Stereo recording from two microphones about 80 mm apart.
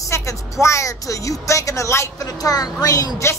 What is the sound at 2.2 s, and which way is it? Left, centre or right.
A woman's voice, left.